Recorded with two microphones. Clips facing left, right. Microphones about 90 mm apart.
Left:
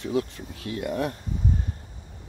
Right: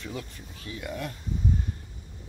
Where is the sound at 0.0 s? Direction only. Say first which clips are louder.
Left 11 dB; 65° left (ahead or behind).